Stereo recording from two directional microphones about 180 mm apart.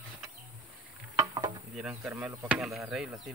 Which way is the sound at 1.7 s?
5° right (ahead or behind).